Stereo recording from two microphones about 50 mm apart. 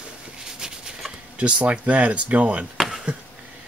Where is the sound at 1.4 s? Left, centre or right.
Right.